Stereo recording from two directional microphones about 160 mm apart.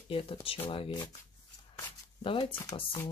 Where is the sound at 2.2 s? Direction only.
35° left (ahead or behind).